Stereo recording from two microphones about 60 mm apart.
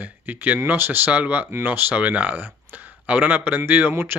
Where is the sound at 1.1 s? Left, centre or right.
Right.